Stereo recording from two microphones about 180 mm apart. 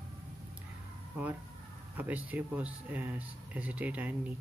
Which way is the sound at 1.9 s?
10° right (ahead or behind).